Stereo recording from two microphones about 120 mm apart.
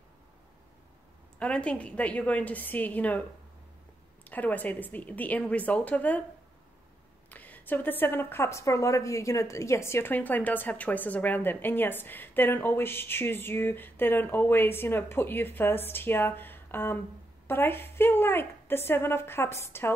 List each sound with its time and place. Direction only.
1.4 s a woman's voice: 10° left (ahead or behind)
7.2 s a woman's voice: 15° left (ahead or behind)